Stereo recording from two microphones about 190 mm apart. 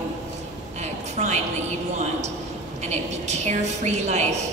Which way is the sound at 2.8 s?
35° right (ahead or behind).